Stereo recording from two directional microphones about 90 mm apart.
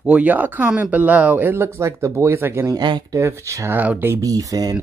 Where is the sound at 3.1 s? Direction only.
30° right (ahead or behind).